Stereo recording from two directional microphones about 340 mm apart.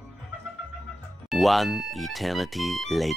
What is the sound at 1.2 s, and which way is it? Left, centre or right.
Speech, centre.